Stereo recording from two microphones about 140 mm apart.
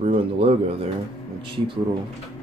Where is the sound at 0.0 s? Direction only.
45° right (ahead or behind).